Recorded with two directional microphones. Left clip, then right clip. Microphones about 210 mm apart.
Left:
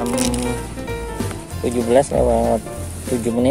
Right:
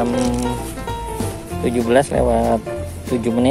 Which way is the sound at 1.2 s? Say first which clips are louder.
Right 3 dB; 5° right (ahead or behind).